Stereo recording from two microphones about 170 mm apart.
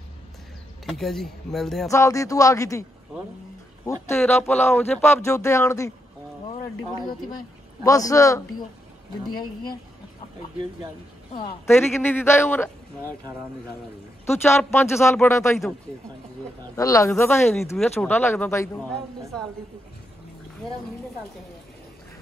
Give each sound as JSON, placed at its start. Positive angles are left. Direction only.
{"t": 0.8, "sound": "speech", "side_deg": 0}
{"t": 1.9, "sound": "speech", "side_deg": 15}
{"t": 3.8, "sound": "speech", "side_deg": 15}
{"t": 7.8, "sound": "speech", "side_deg": 20}
{"t": 11.6, "sound": "speech", "side_deg": 15}
{"t": 14.2, "sound": "speech", "side_deg": 15}
{"t": 16.7, "sound": "speech", "side_deg": 20}
{"t": 19.3, "sound": "speech", "side_deg": 5}